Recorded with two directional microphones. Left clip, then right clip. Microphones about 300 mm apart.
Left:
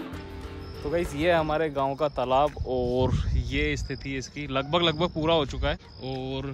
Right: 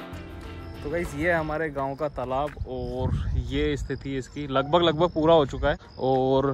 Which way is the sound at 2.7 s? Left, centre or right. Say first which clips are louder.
Left 6 dB; left.